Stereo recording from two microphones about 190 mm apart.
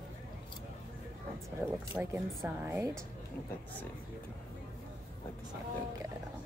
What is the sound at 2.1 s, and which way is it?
Speech, 15° right (ahead or behind).